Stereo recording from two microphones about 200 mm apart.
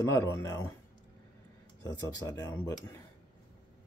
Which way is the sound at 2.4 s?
15° left (ahead or behind).